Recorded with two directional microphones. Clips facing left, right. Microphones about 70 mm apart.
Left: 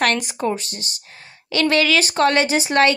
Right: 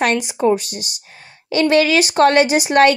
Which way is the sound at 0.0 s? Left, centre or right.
Centre.